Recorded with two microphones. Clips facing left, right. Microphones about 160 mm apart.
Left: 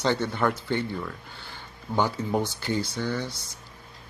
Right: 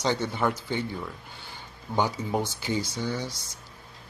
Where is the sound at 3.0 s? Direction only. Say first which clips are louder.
Left 1 dB; 15° right (ahead or behind).